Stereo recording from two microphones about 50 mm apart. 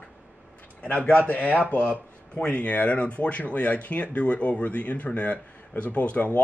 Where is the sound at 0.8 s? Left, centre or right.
Left.